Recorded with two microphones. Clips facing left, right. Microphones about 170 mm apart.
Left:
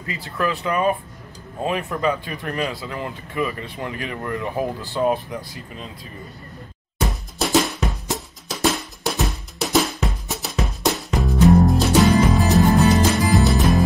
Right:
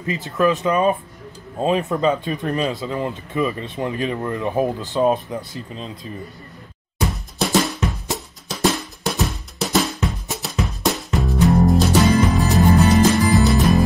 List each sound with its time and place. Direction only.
0.0 s speech: 20° right (ahead or behind)
7.3 s drum: centre (ahead or behind)
8.5 s music: centre (ahead or behind)